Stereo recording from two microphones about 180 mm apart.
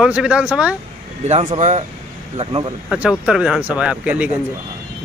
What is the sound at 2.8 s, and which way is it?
Speech, 5° right (ahead or behind).